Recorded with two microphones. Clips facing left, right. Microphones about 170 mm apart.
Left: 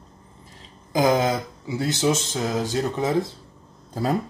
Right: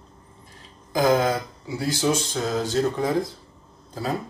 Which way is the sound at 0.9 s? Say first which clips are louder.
Even; 20° left (ahead or behind).